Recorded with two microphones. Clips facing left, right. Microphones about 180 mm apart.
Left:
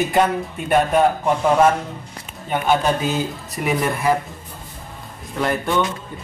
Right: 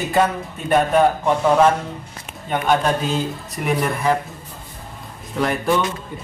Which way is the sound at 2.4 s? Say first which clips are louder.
Even; 5° left (ahead or behind).